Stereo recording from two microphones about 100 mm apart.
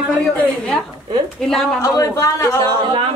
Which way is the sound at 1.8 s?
30° left (ahead or behind).